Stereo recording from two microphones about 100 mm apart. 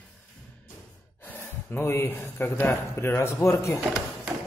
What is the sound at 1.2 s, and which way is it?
Speech, 20° left (ahead or behind).